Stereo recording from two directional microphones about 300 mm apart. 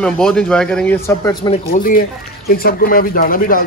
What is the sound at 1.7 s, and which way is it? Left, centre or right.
Speech, left.